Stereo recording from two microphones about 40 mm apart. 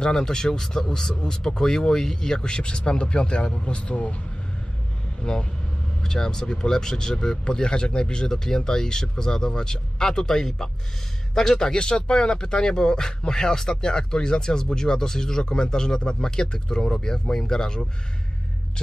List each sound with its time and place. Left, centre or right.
0.0 s speech: centre; by 4.2 s left
5.2 s speech: centre